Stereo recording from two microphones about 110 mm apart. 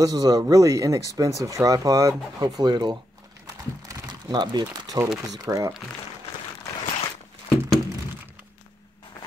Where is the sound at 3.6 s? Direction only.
30° right (ahead or behind).